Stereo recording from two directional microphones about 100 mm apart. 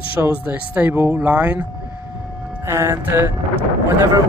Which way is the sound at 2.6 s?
30° right (ahead or behind).